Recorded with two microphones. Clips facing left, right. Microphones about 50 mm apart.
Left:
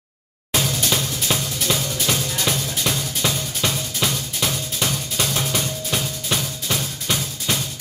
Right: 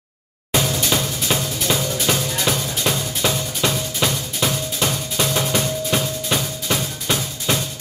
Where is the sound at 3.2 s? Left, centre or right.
Centre.